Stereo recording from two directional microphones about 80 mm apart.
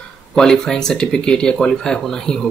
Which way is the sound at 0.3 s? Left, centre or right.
Centre.